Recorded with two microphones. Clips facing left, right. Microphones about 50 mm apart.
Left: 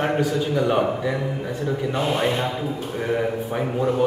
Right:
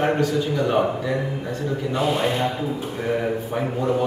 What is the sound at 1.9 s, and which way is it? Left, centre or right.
Speech, left.